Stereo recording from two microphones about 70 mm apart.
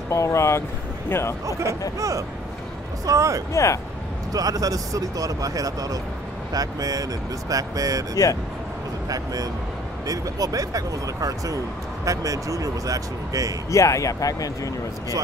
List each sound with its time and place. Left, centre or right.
0.1 s speech: left
2.0 s speech: right
3.5 s speech: left
4.3 s speech: right
13.7 s speech: left